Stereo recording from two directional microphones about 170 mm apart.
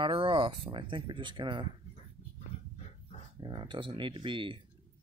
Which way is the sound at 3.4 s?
25° right (ahead or behind).